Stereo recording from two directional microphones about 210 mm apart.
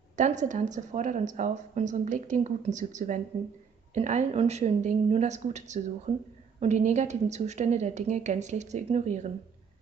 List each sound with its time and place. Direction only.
0.1 s speech: 35° right (ahead or behind)